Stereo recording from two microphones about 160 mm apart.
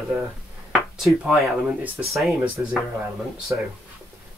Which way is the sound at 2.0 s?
5° right (ahead or behind).